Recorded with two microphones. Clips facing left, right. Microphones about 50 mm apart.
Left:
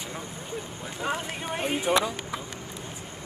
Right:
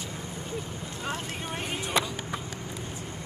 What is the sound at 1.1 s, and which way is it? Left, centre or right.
Speech, centre.